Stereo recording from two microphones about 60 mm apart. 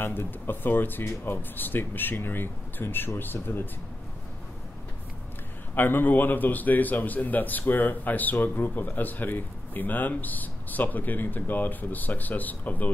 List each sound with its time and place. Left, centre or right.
0.0 s speech: left
5.8 s a man's voice: left